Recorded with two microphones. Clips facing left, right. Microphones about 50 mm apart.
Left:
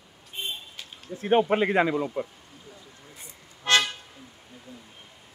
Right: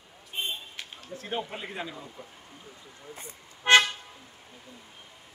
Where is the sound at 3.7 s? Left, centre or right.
Right.